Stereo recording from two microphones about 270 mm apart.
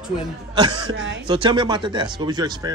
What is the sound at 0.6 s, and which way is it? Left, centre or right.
Speech, centre.